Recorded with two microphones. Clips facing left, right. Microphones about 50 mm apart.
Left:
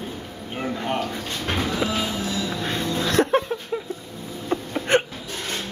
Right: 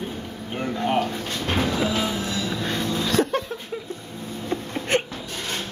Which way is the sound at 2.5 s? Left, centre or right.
Centre.